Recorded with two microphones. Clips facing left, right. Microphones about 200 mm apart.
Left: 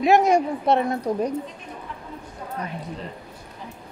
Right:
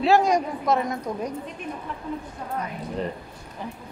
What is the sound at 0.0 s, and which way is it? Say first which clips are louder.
A woman's voice: left 2 dB; 20° left (ahead or behind).